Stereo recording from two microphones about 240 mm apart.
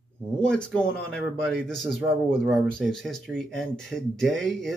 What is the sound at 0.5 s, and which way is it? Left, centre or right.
Speech, centre.